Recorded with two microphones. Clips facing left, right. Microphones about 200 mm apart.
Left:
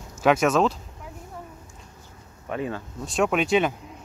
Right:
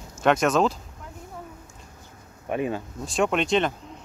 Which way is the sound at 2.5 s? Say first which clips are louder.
Right 3 dB; 15° right (ahead or behind).